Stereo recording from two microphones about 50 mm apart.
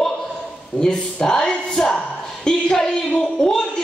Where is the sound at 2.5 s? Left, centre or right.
Centre.